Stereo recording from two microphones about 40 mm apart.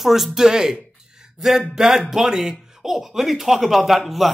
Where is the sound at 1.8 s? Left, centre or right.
Centre.